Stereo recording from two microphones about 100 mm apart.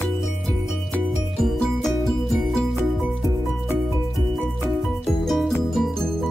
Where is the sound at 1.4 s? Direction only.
Centre (ahead or behind).